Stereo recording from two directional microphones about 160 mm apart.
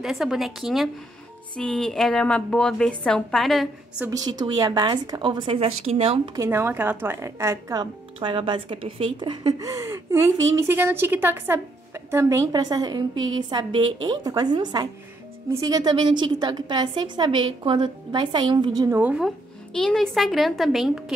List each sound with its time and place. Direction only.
0.0 s a woman's voice: centre (ahead or behind)
4.1 s a woman's voice: 25° right (ahead or behind)
6.3 s a woman's voice: 15° right (ahead or behind)
18.9 s a woman's voice: 5° right (ahead or behind)